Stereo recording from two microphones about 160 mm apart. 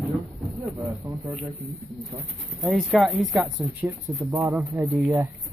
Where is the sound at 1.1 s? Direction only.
20° right (ahead or behind).